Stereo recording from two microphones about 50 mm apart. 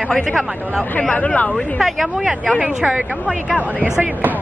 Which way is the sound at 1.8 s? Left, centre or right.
Centre.